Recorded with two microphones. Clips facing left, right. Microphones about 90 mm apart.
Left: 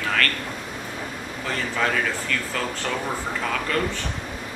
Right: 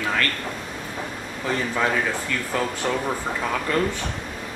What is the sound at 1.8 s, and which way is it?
Speech, 20° right (ahead or behind).